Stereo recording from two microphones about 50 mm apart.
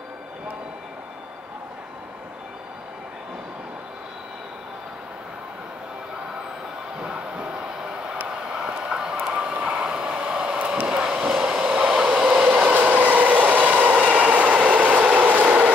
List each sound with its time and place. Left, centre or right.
7.0 s a sound: centre
8.5 s train: centre
9.2 s vehicle: right
12.2 s train: centre
12.4 s train: right